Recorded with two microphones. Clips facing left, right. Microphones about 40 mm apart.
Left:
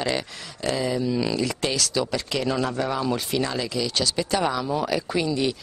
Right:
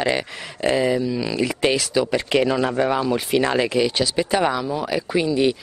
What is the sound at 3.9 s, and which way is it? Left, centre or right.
Speech, centre.